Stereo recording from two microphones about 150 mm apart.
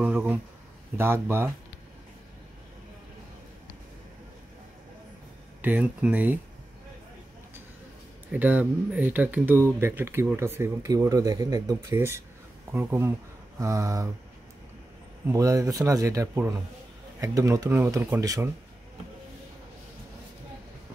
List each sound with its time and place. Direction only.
0.0 s a sound: 10° right (ahead or behind)
0.9 s speech: 15° right (ahead or behind)
5.6 s speech: 10° right (ahead or behind)
8.3 s a man's voice: 10° right (ahead or behind)
15.2 s a man's voice: 20° right (ahead or behind)